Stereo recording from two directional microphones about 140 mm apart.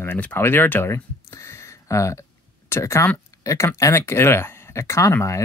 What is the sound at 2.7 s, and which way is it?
Speech, 20° left (ahead or behind).